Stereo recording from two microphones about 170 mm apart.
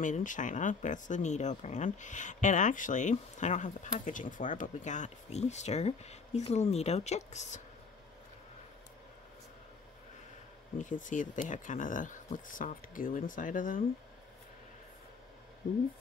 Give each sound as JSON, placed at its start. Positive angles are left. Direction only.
{"t": 0.0, "sound": "speech", "side_deg": 50}
{"t": 10.8, "sound": "speech", "side_deg": 50}